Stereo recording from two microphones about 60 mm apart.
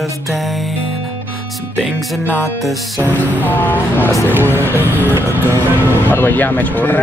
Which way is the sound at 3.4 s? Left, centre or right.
Left.